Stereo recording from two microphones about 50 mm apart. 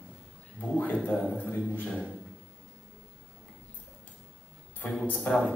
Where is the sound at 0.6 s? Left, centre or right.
Left.